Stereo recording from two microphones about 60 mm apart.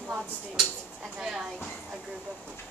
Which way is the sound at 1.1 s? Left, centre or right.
Centre.